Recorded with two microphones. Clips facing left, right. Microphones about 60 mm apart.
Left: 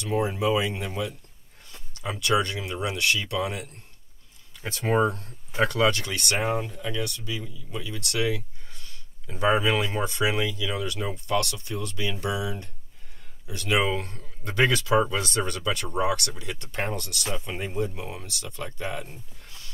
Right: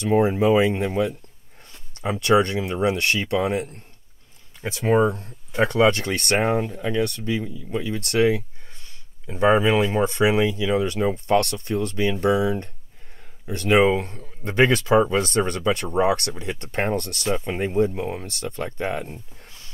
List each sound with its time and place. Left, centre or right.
0.0 s speech: right
4.6 s speech: centre
5.6 s speech: right
18.2 s speech: right